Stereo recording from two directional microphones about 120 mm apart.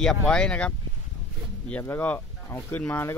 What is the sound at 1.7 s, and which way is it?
Speech, 15° left (ahead or behind).